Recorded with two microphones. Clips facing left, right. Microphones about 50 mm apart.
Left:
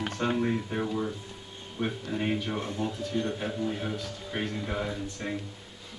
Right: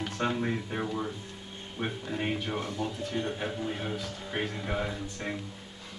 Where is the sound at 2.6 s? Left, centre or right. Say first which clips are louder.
Left 1 dB; left.